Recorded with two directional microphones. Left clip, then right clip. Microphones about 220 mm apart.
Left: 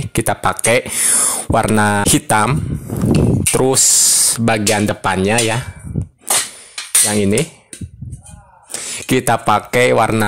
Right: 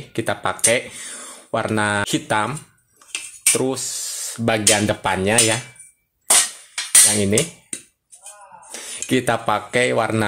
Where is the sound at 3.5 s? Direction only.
55° left (ahead or behind).